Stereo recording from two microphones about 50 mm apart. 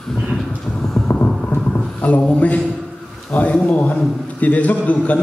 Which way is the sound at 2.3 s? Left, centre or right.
Left.